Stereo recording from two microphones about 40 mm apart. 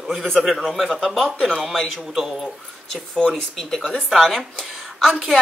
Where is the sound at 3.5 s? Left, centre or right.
Centre.